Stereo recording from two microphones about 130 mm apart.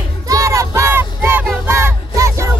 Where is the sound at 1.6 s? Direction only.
20° right (ahead or behind).